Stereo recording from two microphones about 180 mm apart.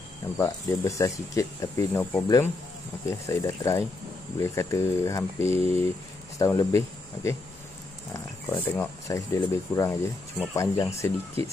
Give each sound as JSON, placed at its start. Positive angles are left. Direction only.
{"t": 0.4, "sound": "speech", "side_deg": 15}
{"t": 8.1, "sound": "speech", "side_deg": 15}